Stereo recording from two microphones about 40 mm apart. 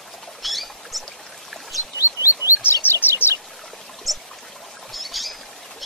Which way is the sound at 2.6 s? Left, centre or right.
Left.